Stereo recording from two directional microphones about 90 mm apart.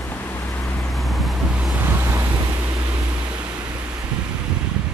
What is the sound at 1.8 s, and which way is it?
Vehicle, 25° right (ahead or behind).